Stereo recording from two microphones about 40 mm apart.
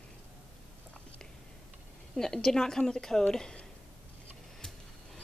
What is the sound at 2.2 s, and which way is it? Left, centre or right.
A woman's voice, centre.